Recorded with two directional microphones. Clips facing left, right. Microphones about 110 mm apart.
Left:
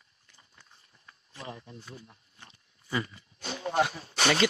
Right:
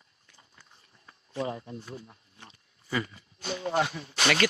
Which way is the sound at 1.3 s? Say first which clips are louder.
Right 10 dB; 40° right (ahead or behind).